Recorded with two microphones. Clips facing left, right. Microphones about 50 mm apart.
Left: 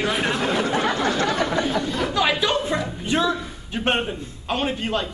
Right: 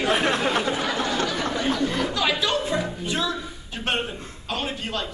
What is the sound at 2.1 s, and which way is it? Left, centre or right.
Speech, centre.